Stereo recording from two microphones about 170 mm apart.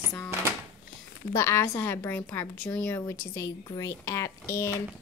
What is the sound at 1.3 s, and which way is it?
A woman's voice, 15° left (ahead or behind).